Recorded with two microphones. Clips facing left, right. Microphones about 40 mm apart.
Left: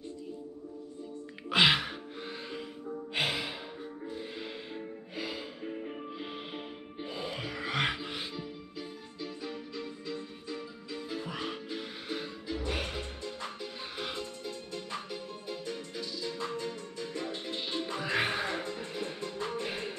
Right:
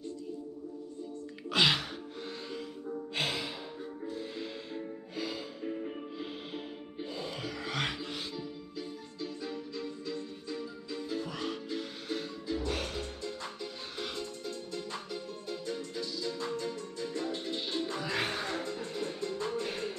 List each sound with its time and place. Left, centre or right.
1.5 s music: centre